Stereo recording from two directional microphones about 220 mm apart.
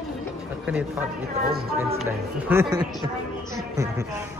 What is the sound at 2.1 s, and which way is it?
Speech, 10° right (ahead or behind).